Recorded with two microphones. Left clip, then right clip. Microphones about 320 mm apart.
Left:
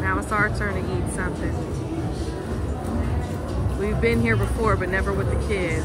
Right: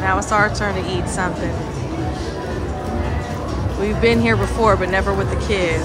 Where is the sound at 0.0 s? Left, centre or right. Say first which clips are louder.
Right 6 dB; centre.